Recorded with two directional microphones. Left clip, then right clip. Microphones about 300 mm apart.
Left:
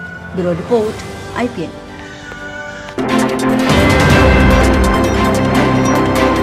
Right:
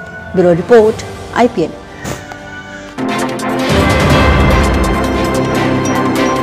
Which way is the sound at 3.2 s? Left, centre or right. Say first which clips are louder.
Left 3 dB; centre.